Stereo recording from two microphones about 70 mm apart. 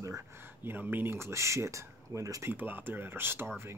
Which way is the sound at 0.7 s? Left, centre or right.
Right.